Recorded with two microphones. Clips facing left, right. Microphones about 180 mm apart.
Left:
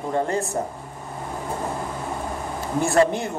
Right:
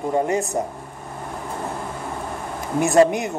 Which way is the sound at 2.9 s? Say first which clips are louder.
Right 4 dB; 20° right (ahead or behind).